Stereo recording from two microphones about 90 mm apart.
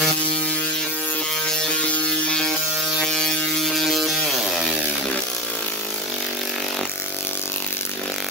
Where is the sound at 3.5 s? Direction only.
5° left (ahead or behind).